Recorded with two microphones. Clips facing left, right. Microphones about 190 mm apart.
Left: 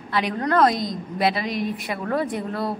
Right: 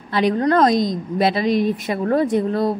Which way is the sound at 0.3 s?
35° right (ahead or behind).